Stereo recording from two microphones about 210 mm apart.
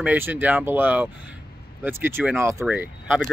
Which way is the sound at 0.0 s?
5° right (ahead or behind).